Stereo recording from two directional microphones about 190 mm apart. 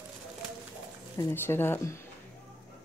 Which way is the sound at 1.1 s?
15° left (ahead or behind).